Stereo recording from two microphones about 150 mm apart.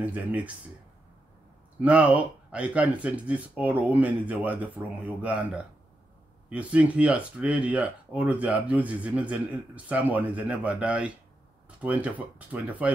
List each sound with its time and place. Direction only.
0.0 s speech: 10° right (ahead or behind)
1.8 s speech: 10° right (ahead or behind)